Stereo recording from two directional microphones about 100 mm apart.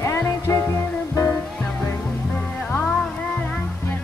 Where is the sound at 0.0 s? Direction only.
30° left (ahead or behind).